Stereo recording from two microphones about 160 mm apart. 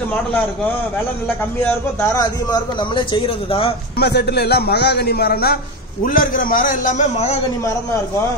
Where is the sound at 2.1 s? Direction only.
25° left (ahead or behind).